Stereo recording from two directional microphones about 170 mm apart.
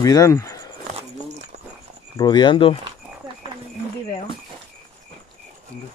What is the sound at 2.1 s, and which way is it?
Speech, 25° left (ahead or behind).